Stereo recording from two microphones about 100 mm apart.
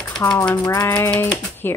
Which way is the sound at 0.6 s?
25° left (ahead or behind).